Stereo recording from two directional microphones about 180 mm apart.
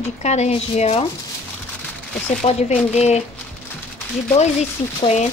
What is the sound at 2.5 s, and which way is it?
Speech, 30° left (ahead or behind).